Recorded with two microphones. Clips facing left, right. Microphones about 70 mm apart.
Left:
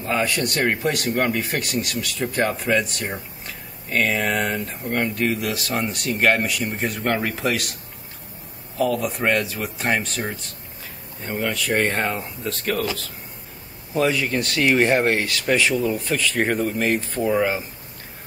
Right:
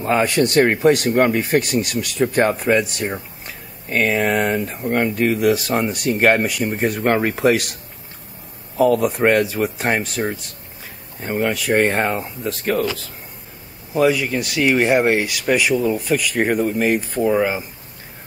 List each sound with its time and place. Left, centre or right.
0.0 s speech: right
2.8 s speech: centre
8.7 s speech: right
11.2 s speech: right
13.9 s speech: centre